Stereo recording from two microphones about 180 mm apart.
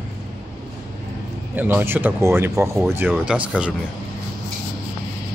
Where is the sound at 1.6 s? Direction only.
10° right (ahead or behind).